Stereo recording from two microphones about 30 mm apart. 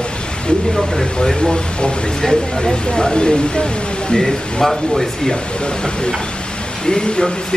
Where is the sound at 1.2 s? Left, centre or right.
Left.